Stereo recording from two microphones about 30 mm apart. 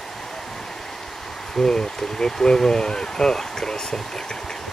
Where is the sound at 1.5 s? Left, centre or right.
Centre.